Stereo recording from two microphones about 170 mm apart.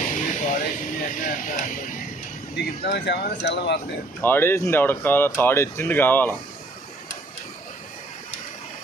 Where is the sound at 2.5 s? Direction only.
70° left (ahead or behind).